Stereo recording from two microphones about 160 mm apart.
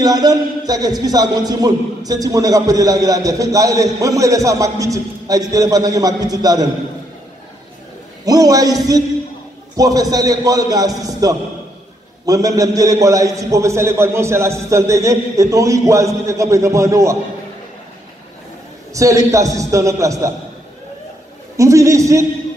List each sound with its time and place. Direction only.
0.0 s a man's voice: 25° right (ahead or behind)
8.3 s a man's voice: 20° right (ahead or behind)
18.9 s a man's voice: 20° right (ahead or behind)
21.5 s a man's voice: 20° right (ahead or behind)